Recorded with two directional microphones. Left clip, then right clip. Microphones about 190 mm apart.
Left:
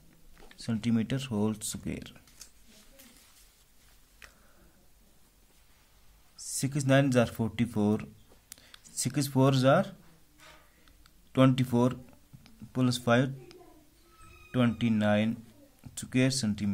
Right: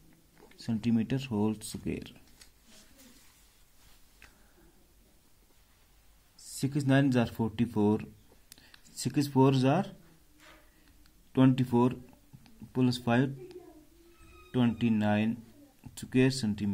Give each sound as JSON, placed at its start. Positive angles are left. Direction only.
{"t": 0.6, "sound": "speech", "side_deg": 10}
{"t": 4.2, "sound": "a sound", "side_deg": 15}
{"t": 6.5, "sound": "speech", "side_deg": 10}
{"t": 11.3, "sound": "speech", "side_deg": 20}